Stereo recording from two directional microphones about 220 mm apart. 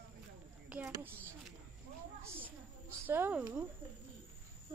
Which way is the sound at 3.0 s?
10° right (ahead or behind).